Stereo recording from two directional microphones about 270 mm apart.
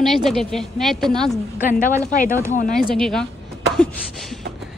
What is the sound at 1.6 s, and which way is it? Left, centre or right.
Speech, left.